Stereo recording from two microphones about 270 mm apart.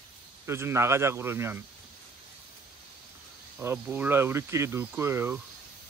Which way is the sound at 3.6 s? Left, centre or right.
Centre.